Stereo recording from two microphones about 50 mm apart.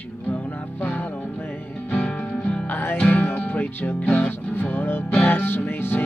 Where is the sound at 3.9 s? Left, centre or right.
Left.